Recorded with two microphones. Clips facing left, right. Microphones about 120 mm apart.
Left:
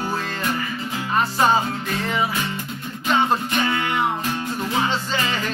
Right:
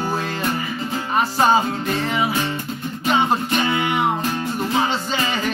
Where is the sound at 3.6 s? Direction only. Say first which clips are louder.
Right 2 dB; 15° right (ahead or behind).